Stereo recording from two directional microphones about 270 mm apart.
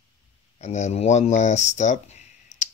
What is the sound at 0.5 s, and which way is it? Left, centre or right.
Speech, left.